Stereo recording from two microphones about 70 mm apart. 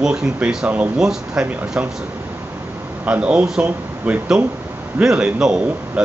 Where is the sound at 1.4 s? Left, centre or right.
Right.